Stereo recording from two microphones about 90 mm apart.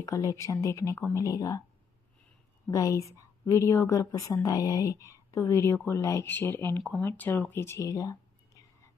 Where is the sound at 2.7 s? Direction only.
35° left (ahead or behind).